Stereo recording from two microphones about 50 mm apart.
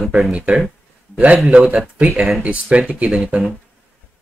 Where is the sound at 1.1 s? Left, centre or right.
Right.